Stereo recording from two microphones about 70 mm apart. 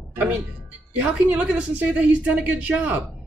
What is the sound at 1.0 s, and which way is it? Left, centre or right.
A woman's voice, centre.